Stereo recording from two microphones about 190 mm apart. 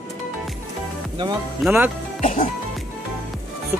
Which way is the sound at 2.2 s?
45° left (ahead or behind).